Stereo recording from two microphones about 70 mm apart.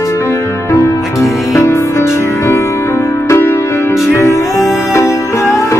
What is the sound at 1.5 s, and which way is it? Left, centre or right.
Music, left.